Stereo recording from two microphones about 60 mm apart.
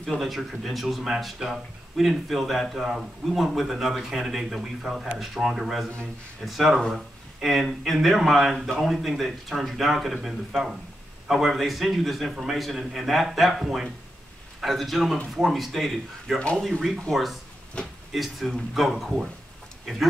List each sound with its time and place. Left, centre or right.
0.2 s speech: centre
16.3 s speech: centre
17.1 s speech: centre
17.8 s speech: centre
18.1 s speech: centre